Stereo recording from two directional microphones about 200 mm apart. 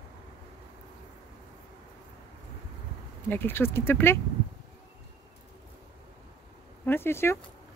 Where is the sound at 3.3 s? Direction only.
10° left (ahead or behind).